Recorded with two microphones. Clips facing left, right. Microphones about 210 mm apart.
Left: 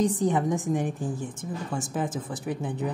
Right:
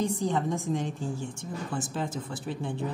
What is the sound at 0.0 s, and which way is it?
A woman's voice, 20° left (ahead or behind).